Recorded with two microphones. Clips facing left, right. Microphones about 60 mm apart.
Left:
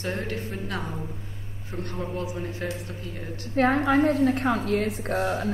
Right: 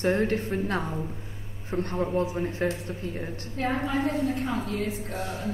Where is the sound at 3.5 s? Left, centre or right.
Left.